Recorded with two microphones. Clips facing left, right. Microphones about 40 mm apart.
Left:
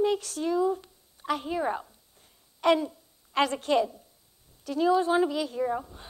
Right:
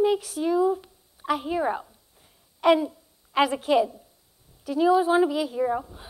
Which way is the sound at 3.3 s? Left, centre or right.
Centre.